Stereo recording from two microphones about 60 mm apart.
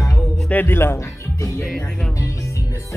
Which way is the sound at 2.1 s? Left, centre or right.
Left.